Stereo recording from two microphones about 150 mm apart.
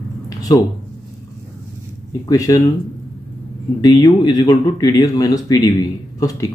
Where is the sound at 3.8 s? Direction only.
25° left (ahead or behind).